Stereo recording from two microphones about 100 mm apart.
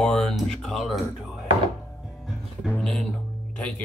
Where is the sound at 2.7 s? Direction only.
5° left (ahead or behind).